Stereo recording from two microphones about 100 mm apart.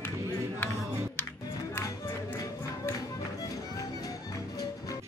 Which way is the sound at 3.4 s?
35° left (ahead or behind).